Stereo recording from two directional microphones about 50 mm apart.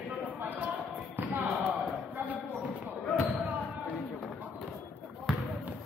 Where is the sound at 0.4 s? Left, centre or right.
Right.